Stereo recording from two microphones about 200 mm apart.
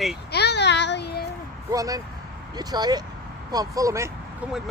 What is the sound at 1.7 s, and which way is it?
Speech, 15° right (ahead or behind).